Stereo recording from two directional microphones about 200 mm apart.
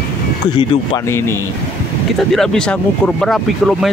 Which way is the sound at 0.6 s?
15° left (ahead or behind).